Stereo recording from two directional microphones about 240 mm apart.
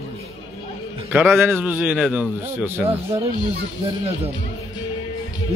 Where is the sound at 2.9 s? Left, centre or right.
Right.